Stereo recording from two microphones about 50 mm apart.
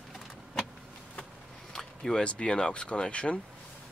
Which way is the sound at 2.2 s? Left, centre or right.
Centre.